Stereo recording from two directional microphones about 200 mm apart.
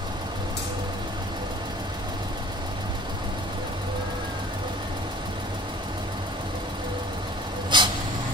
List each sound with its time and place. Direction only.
7.7 s vehicle: 25° right (ahead or behind)